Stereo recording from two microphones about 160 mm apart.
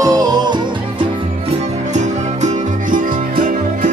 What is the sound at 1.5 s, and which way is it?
Music, 45° right (ahead or behind).